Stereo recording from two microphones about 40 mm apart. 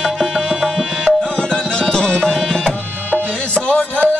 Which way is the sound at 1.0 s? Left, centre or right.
Left.